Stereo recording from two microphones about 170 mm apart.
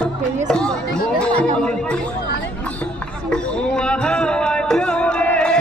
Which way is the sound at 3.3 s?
5° left (ahead or behind).